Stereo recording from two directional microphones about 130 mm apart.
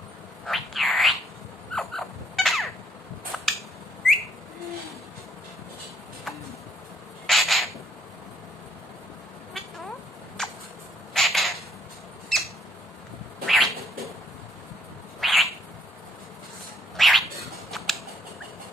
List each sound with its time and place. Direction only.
0.5 s frog: centre (ahead or behind)
1.8 s cat: centre (ahead or behind)
3.3 s a sound: centre (ahead or behind)
7.2 s a sound: centre (ahead or behind)
10.4 s a sound: 5° left (ahead or behind)
13.5 s bird: centre (ahead or behind)
15.1 s bird: centre (ahead or behind)
16.9 s bird: centre (ahead or behind)
17.6 s scissors: centre (ahead or behind)